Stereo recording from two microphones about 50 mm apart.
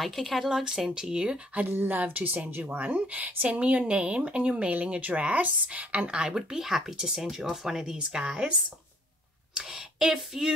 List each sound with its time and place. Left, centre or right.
0.0 s speech: centre; by 1.6 s right
1.6 s a woman's voice: right; by 8.5 s centre
9.7 s female singing: centre